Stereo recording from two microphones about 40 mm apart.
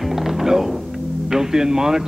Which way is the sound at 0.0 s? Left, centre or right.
Centre.